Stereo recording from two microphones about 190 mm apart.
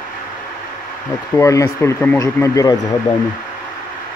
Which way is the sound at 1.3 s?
15° left (ahead or behind).